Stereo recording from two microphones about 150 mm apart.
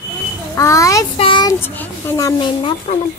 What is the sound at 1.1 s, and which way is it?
Child singing, 35° left (ahead or behind).